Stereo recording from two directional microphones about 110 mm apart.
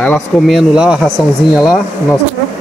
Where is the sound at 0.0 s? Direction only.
5° left (ahead or behind).